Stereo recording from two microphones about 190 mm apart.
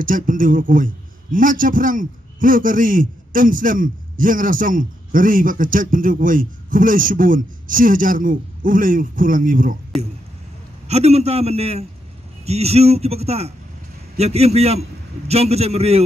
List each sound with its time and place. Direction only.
0.0 s a man's voice: 45° right (ahead or behind)
10.9 s a man's voice: 35° right (ahead or behind)